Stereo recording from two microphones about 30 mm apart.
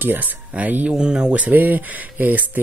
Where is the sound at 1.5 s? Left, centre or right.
Right.